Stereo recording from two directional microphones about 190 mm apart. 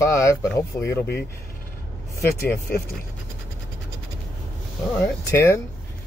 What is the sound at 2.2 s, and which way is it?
Speech, 10° left (ahead or behind).